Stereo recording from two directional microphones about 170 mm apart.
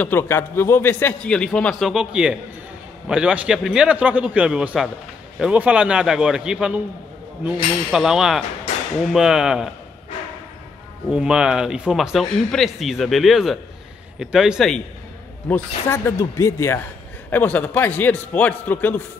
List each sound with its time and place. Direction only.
0.0 s a man's voice: 15° left (ahead or behind); by 9.7 s 5° right (ahead or behind)
11.1 s speech: 5° right (ahead or behind)
15.4 s a man's voice: 15° left (ahead or behind)